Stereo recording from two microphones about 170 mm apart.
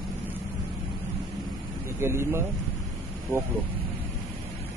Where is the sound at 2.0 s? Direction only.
15° right (ahead or behind).